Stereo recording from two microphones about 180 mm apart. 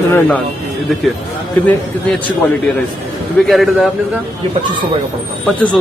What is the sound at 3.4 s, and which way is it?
Speech, centre (ahead or behind).